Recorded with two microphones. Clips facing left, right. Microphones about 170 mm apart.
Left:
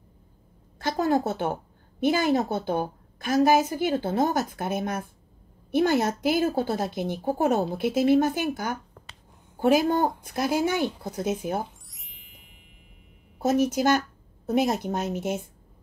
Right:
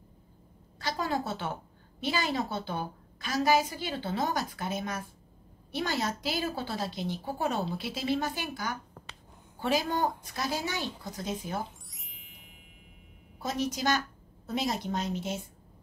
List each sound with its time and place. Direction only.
0.7 s a woman's voice: 50° left (ahead or behind)
11.9 s music: centre (ahead or behind)
13.4 s a woman's voice: 50° left (ahead or behind)